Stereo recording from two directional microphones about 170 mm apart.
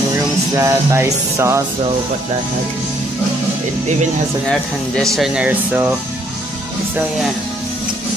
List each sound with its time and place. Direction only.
0.6 s speech: 20° right (ahead or behind)
5.1 s speech: 5° right (ahead or behind)